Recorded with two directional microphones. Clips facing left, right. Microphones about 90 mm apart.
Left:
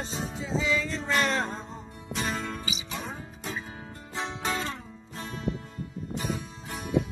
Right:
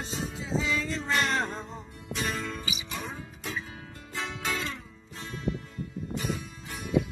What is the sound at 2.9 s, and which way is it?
Music, 15° left (ahead or behind).